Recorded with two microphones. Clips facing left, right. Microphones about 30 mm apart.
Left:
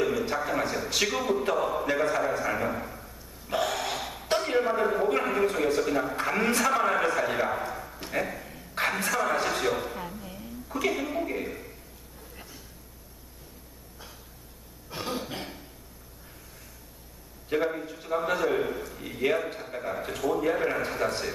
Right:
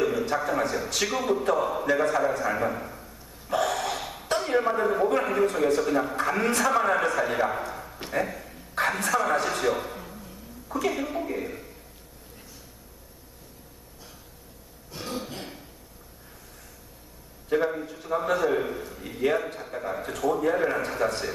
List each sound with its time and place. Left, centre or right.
0.2 s a man's voice: centre
1.4 s a sound: centre
4.4 s a man's voice: centre
8.1 s a sound: centre
8.8 s a man's voice: centre
15.0 s throat clearing: centre
17.5 s a man's voice: centre